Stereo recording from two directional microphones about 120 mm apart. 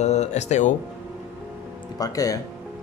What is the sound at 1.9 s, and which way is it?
Speech, 30° left (ahead or behind).